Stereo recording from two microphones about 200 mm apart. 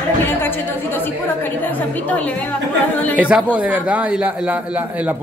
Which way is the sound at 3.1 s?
5° right (ahead or behind).